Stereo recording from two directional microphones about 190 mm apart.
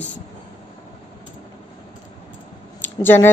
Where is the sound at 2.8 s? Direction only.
10° left (ahead or behind).